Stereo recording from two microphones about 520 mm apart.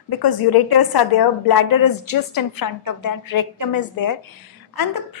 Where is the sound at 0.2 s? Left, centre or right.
Left.